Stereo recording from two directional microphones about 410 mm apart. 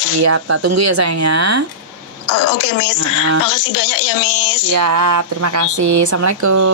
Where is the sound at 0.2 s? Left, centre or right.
Right.